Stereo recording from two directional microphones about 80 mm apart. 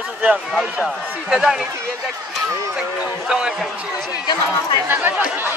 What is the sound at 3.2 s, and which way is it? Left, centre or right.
Speech, centre.